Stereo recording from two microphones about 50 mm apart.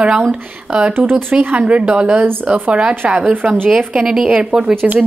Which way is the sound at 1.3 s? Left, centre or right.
Right.